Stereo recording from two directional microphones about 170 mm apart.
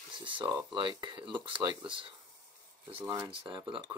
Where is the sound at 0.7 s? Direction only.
30° right (ahead or behind).